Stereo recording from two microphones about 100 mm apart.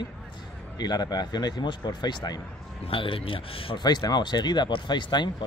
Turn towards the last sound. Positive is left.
turn(degrees=50)  # may be behind; listen again after turning